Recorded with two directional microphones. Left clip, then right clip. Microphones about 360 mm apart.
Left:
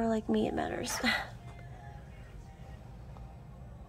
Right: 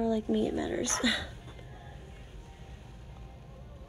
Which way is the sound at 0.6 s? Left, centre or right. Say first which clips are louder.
Right 2 dB; centre.